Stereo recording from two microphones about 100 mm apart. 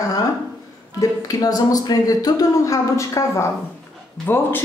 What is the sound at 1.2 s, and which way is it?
Speech, 40° left (ahead or behind).